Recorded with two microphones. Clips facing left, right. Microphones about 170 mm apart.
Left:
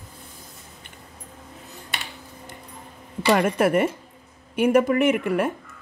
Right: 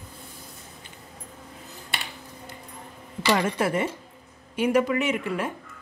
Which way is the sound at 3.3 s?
60° left (ahead or behind).